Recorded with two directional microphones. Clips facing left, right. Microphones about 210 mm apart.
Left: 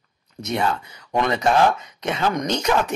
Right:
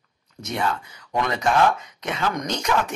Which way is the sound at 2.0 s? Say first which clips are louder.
Left 4 dB; 25° left (ahead or behind).